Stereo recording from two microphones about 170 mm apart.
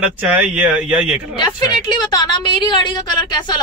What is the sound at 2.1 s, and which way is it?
A woman's voice, 25° left (ahead or behind).